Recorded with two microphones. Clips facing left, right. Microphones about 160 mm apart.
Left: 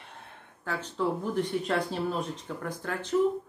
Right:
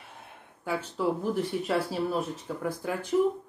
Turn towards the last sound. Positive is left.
turn(degrees=-10)  # may be behind; listen again after turning